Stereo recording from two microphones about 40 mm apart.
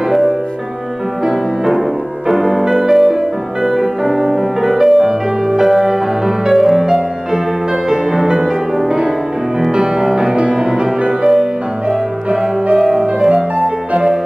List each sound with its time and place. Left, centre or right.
2.2 s music: centre
12.7 s music: centre